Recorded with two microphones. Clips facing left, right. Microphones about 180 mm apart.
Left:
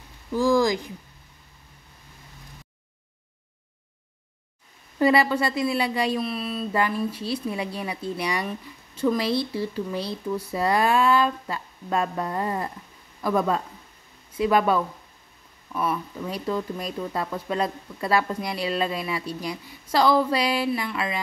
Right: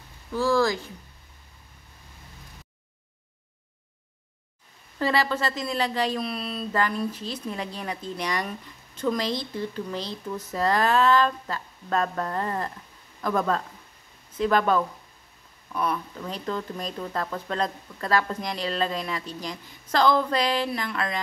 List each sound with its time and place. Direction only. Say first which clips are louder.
0.3 s speech: left 2 dB; 15° left (ahead or behind)
4.9 s speech: left 5 dB; 15° left (ahead or behind)